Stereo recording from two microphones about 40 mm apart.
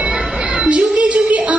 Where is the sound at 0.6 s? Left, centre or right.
Right.